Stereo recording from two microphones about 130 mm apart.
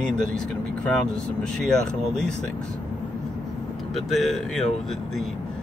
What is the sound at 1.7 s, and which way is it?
Speech, 5° left (ahead or behind).